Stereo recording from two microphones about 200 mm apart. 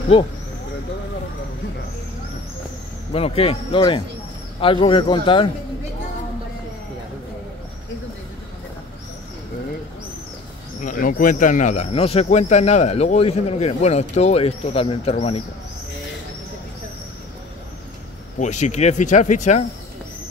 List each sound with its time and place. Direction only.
0.1 s speech: 25° left (ahead or behind)
3.1 s speech: 30° left (ahead or behind)
10.8 s speech: 40° left (ahead or behind)
18.4 s speech: 35° left (ahead or behind)